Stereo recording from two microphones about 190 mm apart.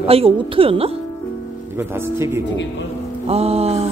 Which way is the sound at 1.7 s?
15° right (ahead or behind).